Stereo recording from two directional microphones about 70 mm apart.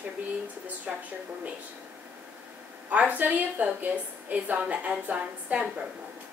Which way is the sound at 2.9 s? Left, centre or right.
Right.